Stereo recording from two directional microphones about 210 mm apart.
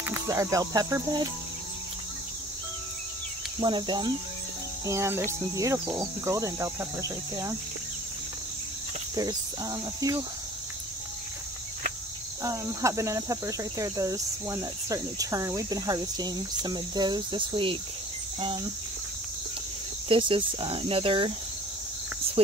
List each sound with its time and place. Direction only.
0.0 s speech: 10° right (ahead or behind)
3.5 s speech: 20° right (ahead or behind)
4.8 s cricket: 15° right (ahead or behind)
9.1 s cricket: 15° right (ahead or behind)
12.4 s cricket: 15° right (ahead or behind)
20.1 s speech: 25° right (ahead or behind)